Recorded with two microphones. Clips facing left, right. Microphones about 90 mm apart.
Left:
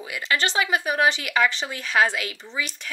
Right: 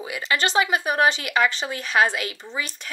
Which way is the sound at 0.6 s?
25° right (ahead or behind).